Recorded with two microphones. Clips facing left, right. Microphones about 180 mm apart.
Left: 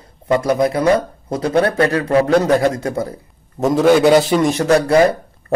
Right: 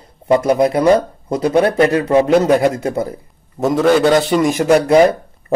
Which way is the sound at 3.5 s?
Centre (ahead or behind).